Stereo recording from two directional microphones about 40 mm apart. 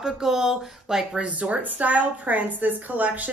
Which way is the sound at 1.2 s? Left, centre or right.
Right.